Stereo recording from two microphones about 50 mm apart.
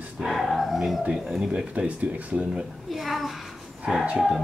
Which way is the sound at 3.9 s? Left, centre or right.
Centre.